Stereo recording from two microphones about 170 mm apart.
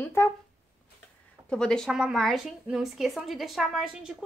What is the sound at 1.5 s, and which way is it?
A woman's voice, 5° left (ahead or behind).